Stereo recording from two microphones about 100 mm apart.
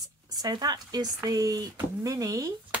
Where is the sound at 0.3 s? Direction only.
40° right (ahead or behind).